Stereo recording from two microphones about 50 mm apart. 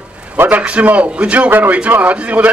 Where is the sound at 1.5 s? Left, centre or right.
Right.